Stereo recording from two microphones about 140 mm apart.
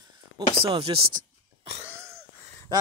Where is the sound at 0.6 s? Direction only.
40° right (ahead or behind).